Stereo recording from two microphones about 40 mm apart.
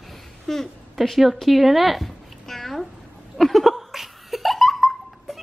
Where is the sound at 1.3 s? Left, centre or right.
Centre.